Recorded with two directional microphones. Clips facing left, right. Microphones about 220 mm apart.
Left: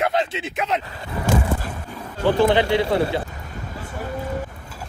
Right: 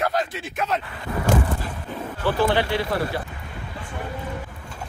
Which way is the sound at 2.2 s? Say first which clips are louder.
Left 4 dB; 20° left (ahead or behind).